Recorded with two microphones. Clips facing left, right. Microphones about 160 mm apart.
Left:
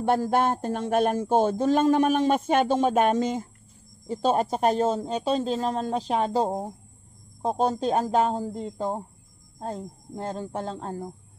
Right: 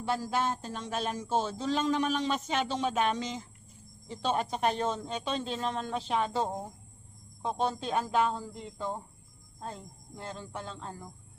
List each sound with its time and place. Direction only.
0.0 s speech: 55° left (ahead or behind)